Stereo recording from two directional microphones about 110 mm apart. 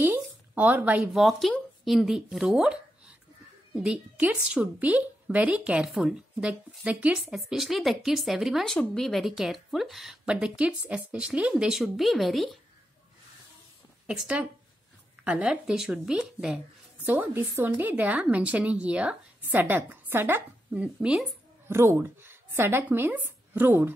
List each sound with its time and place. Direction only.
0.0 s a woman's voice: 15° right (ahead or behind); by 12.4 s centre (ahead or behind)
14.0 s a woman's voice: 10° right (ahead or behind)
21.6 s speech: 20° right (ahead or behind)